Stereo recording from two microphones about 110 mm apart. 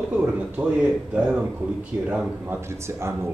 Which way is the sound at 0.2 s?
10° right (ahead or behind).